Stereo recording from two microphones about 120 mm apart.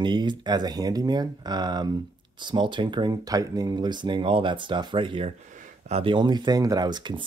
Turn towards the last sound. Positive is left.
turn(degrees=-40)  # may be behind; listen again after turning